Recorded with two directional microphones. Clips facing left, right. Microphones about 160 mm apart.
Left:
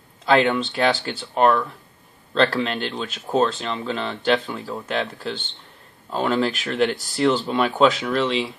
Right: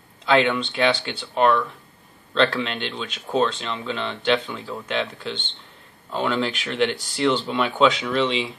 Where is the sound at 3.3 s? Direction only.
Centre (ahead or behind).